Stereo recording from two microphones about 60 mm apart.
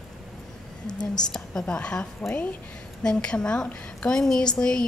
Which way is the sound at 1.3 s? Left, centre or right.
Centre.